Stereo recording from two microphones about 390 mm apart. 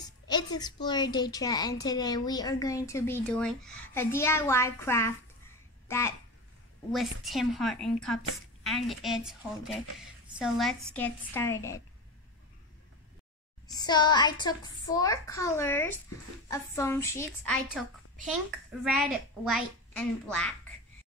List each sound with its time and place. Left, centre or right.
0.3 s a woman's voice: centre
13.7 s a woman's voice: centre
18.9 s a woman's voice: centre